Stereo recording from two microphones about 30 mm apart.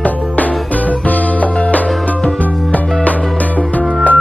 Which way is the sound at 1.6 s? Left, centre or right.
Left.